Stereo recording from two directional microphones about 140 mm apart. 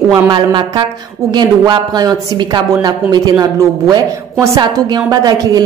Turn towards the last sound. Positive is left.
turn(degrees=-25)  # may be behind; listen again after turning